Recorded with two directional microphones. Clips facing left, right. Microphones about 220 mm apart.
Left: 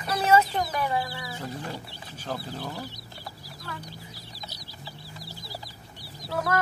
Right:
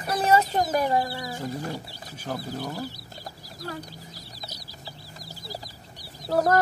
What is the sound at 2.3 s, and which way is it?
Speech, 5° right (ahead or behind).